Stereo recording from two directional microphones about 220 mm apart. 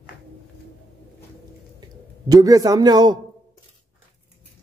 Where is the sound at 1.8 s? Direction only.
15° right (ahead or behind).